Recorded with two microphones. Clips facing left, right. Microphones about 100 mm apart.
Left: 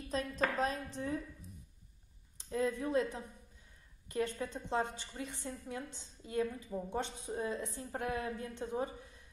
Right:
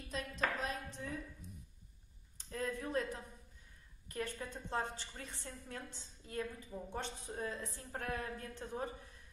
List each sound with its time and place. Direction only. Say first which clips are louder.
0.1 s speech: left 4 dB; 35° left (ahead or behind)
2.3 s a woman's voice: left 6 dB; 20° left (ahead or behind)